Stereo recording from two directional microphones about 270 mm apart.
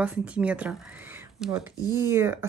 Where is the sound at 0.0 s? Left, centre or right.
Centre.